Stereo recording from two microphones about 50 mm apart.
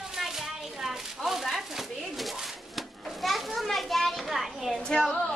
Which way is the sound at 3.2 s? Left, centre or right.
Centre.